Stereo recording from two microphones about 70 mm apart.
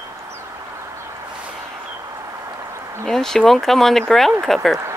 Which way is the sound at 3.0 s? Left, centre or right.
Centre.